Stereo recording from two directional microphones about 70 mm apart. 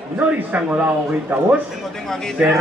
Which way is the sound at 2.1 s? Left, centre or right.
Centre.